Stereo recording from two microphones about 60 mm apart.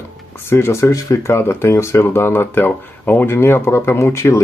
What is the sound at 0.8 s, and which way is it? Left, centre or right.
Speech, left.